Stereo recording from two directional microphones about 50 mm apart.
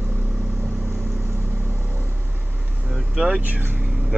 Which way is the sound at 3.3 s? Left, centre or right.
Right.